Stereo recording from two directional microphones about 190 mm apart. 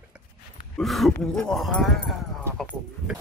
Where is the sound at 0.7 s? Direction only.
Centre (ahead or behind).